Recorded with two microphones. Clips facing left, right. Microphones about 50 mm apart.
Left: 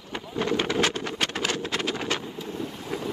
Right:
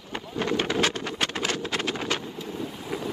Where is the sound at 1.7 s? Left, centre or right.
Right.